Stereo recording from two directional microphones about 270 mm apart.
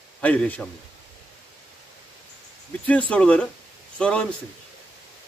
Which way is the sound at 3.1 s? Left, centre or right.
Centre.